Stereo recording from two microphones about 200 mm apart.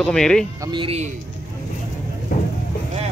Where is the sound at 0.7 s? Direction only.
30° right (ahead or behind).